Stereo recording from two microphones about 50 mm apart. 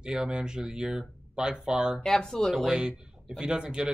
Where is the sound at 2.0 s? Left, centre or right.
Centre.